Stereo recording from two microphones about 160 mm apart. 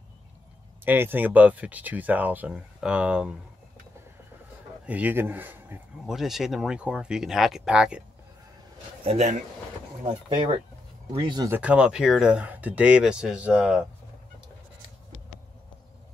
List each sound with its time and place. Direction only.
0.8 s speech: 15° right (ahead or behind)
4.8 s speech: 10° right (ahead or behind)
9.0 s speech: 45° right (ahead or behind)
10.0 s speech: 30° right (ahead or behind)
11.5 s speech: 5° right (ahead or behind)